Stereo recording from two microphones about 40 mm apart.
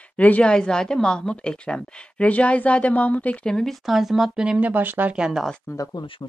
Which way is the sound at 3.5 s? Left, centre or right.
Centre.